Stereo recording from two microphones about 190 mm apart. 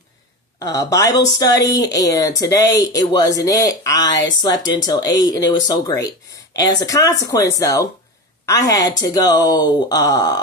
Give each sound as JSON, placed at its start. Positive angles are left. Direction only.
{"t": 0.6, "sound": "speech", "side_deg": 20}